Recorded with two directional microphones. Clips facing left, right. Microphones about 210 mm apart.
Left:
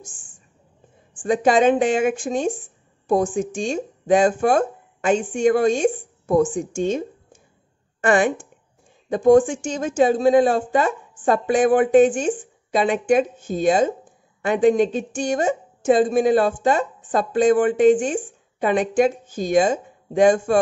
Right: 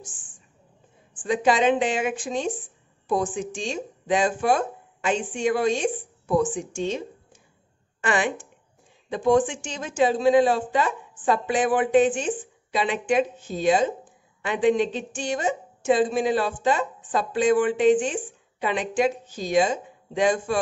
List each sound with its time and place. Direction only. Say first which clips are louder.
1.1 s a woman's voice: left 4 dB; 45° left (ahead or behind)